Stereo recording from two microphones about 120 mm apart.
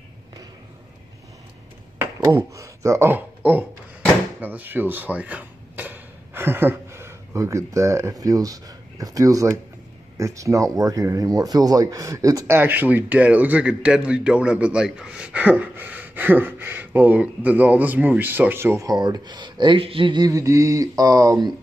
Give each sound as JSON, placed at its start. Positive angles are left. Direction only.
{"t": 2.1, "sound": "speech", "side_deg": -30}
{"t": 18.9, "sound": "speech", "side_deg": -35}